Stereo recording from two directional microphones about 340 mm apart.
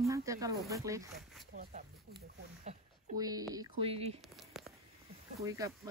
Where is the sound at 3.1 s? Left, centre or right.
Centre.